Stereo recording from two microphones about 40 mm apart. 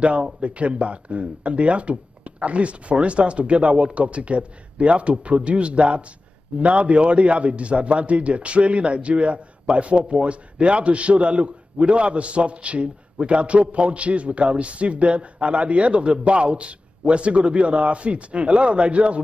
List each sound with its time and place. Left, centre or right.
0.0 s a man's voice: right